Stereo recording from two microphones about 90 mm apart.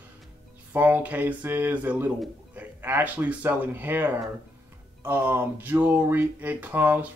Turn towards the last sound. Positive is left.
turn(degrees=-20)  # may be behind; listen again after turning